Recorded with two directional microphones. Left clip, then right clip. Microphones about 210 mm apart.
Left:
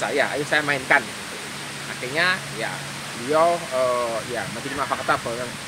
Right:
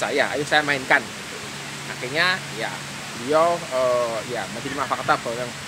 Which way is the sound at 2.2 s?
15° right (ahead or behind).